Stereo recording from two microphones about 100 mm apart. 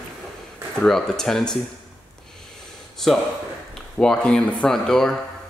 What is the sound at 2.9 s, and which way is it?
A man's voice, 5° left (ahead or behind).